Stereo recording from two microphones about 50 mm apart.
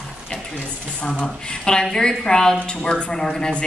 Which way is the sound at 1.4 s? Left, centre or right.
Centre.